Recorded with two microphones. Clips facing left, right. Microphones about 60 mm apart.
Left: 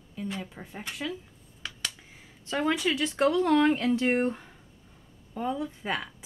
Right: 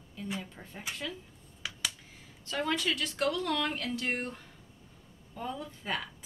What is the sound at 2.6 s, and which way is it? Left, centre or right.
Speech, centre.